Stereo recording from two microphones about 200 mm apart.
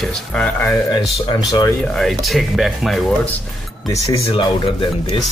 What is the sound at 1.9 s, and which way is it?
Speech, centre (ahead or behind).